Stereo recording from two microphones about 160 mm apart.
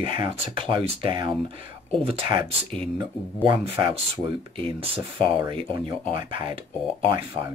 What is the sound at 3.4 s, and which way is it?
Speech, 30° right (ahead or behind).